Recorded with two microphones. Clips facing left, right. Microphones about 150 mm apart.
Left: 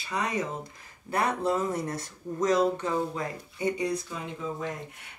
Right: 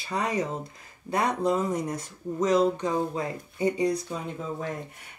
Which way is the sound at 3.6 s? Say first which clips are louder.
Right 4 dB; 35° right (ahead or behind).